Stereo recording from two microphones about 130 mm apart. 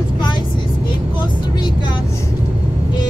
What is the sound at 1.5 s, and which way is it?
Vehicle, 35° left (ahead or behind).